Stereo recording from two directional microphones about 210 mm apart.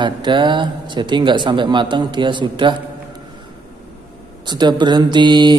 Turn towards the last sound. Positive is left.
turn(degrees=-20)  # may be behind; listen again after turning